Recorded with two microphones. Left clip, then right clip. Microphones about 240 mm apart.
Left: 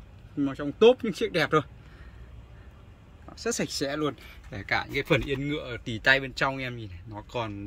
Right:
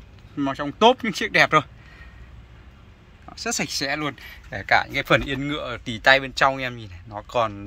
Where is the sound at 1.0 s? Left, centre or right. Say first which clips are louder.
Right 8 dB; centre.